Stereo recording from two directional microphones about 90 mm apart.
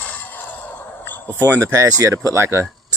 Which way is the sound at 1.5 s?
35° right (ahead or behind).